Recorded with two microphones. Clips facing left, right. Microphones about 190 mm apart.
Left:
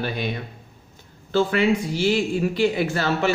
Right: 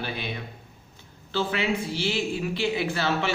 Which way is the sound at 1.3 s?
45° left (ahead or behind).